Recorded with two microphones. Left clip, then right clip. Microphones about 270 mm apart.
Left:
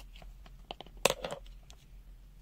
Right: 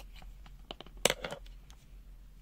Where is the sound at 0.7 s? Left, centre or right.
Centre.